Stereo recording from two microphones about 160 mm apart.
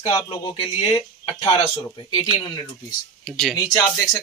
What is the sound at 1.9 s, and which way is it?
Speech, 30° left (ahead or behind).